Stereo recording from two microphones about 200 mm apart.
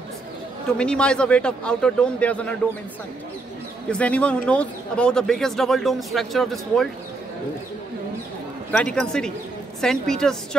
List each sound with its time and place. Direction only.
0.7 s speech: 5° left (ahead or behind)
3.9 s speech: 5° left (ahead or behind)
8.7 s speech: 5° left (ahead or behind)